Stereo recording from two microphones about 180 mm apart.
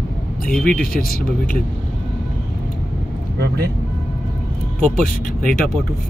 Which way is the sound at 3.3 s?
65° right (ahead or behind).